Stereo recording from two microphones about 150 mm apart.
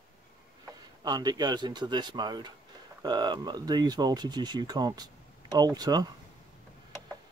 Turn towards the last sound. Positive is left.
turn(degrees=-25)  # may be behind; listen again after turning